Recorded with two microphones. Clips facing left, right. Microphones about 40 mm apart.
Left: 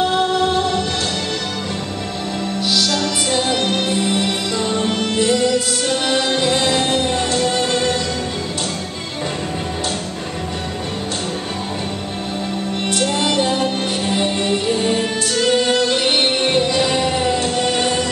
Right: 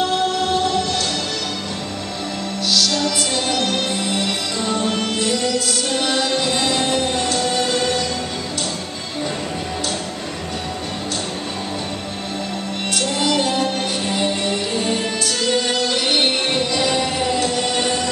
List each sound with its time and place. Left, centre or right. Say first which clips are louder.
2.7 s music: right 1 dB; centre
12.9 s music: left 1 dB; centre